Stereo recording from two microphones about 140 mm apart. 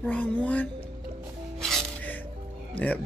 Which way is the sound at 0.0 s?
10° left (ahead or behind).